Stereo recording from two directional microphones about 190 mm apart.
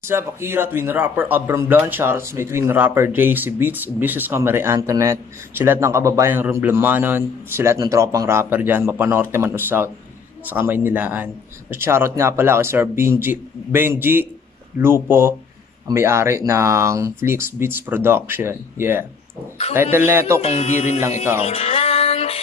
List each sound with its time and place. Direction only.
0.0 s speech: 15° right (ahead or behind)
20.4 s speech: 35° left (ahead or behind)
21.4 s music: 30° left (ahead or behind)